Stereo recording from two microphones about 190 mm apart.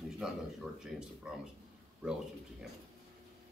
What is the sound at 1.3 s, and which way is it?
Speech, 5° right (ahead or behind).